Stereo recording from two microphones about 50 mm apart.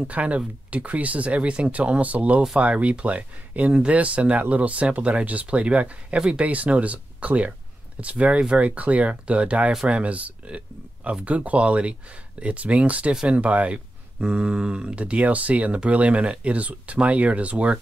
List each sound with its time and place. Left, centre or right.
0.0 s speech: right
6.1 s speech: centre
6.4 s speech: right
13.1 s speech: centre
13.4 s speech: right